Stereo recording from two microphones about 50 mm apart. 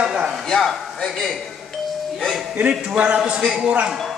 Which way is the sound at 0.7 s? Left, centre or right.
Centre.